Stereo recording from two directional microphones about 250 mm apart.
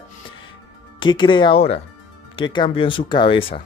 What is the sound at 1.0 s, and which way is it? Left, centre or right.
Speech, centre.